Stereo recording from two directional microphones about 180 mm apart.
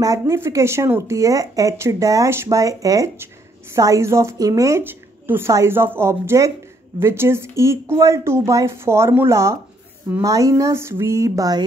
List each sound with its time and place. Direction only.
0.0 s speech: 20° right (ahead or behind)